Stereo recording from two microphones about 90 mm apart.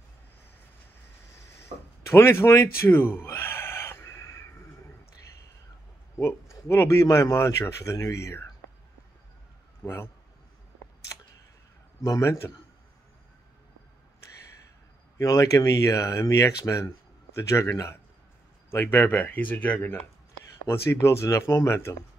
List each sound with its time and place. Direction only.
2.0 s a sound: 30° left (ahead or behind)
6.5 s speech: 30° left (ahead or behind)
9.8 s speech: 25° left (ahead or behind)
12.0 s speech: 35° left (ahead or behind)
15.1 s speech: 35° left (ahead or behind)